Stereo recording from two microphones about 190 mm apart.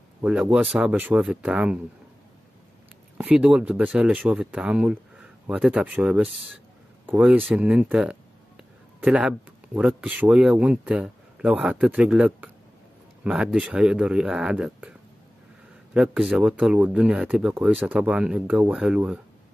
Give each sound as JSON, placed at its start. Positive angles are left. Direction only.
{"t": 0.2, "sound": "speech", "side_deg": -5}
{"t": 3.2, "sound": "speech", "side_deg": -5}